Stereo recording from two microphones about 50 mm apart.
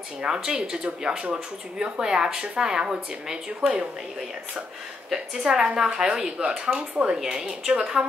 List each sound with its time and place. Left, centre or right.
0.2 s speech: centre
5.1 s speech: centre